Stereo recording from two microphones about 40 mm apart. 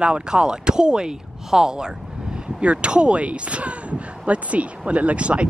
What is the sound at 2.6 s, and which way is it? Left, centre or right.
Speech, right.